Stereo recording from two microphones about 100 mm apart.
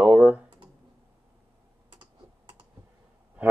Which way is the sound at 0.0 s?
15° right (ahead or behind).